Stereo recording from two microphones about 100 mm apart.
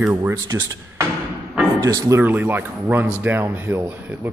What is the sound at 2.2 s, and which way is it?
A man's voice, 20° right (ahead or behind).